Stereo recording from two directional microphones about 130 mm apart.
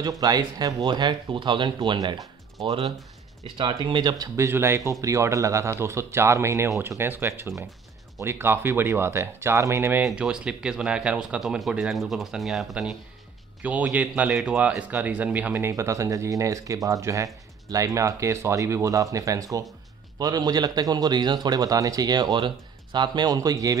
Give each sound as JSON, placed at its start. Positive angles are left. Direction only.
{"t": 0.2, "sound": "a man's voice", "side_deg": -30}
{"t": 2.6, "sound": "a man's voice", "side_deg": -45}
{"t": 4.5, "sound": "speech", "side_deg": -20}
{"t": 10.0, "sound": "a man's voice", "side_deg": -5}